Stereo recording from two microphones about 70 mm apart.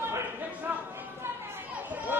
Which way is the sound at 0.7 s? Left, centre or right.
Right.